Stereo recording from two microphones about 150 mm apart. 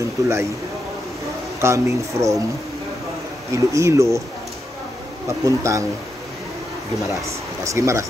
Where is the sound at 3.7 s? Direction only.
20° right (ahead or behind).